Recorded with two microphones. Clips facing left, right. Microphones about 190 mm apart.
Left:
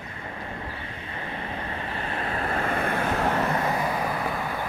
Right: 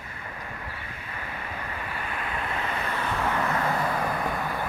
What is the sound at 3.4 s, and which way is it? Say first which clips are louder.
Vehicle: left 2 dB; 25° left (ahead or behind).